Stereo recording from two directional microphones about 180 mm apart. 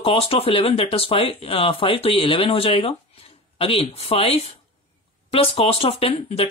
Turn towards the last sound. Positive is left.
turn(degrees=30)  # may be behind; listen again after turning